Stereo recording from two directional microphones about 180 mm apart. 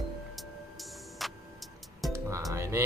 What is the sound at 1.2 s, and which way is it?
Music, centre (ahead or behind).